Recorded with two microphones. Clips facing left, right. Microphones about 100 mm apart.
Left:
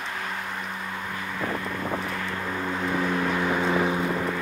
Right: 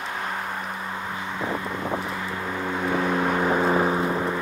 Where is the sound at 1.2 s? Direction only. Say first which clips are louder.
Right 1 dB; 20° right (ahead or behind).